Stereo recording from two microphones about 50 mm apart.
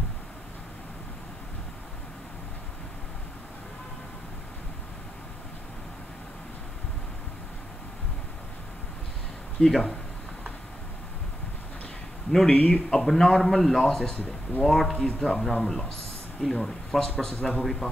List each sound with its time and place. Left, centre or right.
9.6 s speech: centre
12.4 s speech: left
13.0 s a man's voice: centre